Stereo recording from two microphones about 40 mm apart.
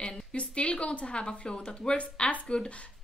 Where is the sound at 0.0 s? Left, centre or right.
Left.